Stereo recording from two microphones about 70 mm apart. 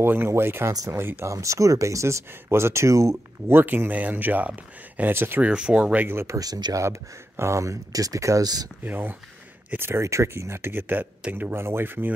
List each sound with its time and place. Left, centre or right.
0.0 s speech: right
1.3 s speech: right
5.4 s speech: centre
6.2 s speech: right
6.8 s speech: right
8.8 s speech: right
10.0 s speech: right